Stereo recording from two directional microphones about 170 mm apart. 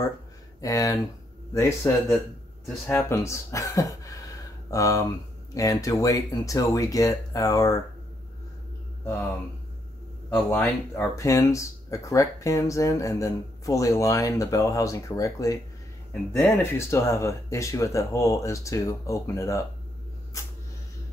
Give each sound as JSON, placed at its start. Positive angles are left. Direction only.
{"t": 0.6, "sound": "speech", "side_deg": 20}
{"t": 10.5, "sound": "speech", "side_deg": 10}